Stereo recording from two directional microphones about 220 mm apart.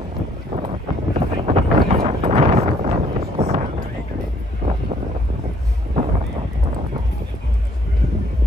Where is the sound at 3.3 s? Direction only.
30° right (ahead or behind).